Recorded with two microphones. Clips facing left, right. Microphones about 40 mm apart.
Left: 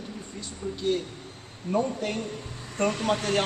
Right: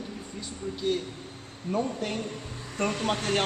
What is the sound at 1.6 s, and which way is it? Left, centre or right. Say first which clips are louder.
Speech: left 2 dB; centre.